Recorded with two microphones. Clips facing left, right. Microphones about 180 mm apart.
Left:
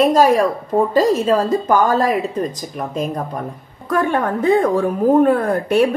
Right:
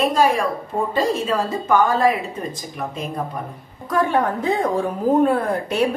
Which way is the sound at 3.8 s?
55° left (ahead or behind).